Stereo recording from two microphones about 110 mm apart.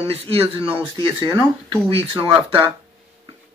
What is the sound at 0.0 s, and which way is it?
Speech, 65° right (ahead or behind).